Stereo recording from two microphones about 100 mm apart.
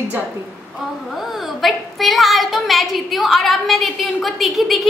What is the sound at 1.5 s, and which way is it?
A woman's voice, centre (ahead or behind).